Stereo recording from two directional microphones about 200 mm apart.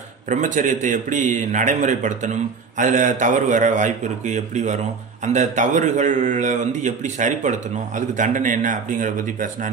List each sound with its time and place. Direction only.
0.3 s a man's voice: 40° right (ahead or behind)